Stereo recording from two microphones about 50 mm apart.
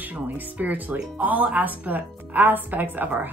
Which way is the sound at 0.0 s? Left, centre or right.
Right.